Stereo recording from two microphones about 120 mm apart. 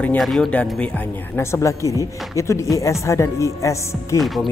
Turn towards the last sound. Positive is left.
turn(degrees=0)  # may be behind; listen again after turning